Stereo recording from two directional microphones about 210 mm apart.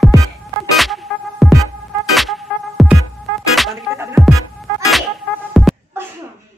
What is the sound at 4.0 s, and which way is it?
Music, 10° right (ahead or behind).